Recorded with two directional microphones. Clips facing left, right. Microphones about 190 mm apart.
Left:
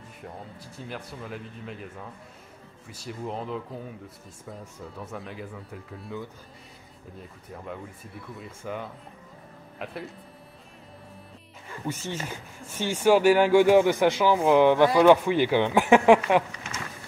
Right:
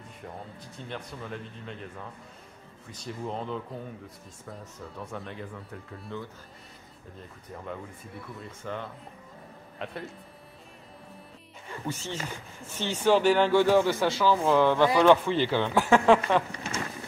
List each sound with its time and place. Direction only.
0.7 s speech: 5° left (ahead or behind)
11.8 s speech: 15° left (ahead or behind)
16.5 s a sound: 30° right (ahead or behind)